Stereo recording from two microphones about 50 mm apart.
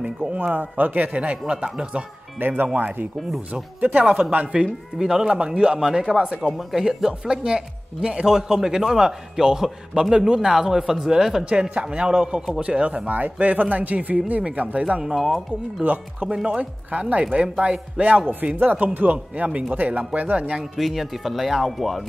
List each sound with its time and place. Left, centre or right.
0.3 s a man's voice: right
2.3 s a man's voice: right
4.0 s speech: centre
4.3 s speech: right
4.9 s speech: centre
11.7 s speech: right
14.9 s speech: centre
15.8 s a man's voice: right
20.7 s speech: centre